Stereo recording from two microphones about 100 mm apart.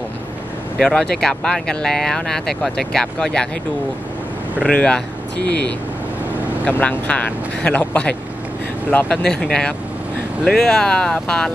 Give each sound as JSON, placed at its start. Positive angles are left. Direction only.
{"t": 0.7, "sound": "speech", "side_deg": 5}
{"t": 4.6, "sound": "speech", "side_deg": 10}
{"t": 6.6, "sound": "speech", "side_deg": 15}